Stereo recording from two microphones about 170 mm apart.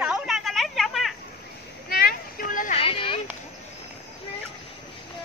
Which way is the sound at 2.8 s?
30° left (ahead or behind).